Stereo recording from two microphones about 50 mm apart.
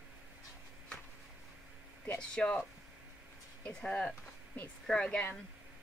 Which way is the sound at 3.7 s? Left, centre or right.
Left.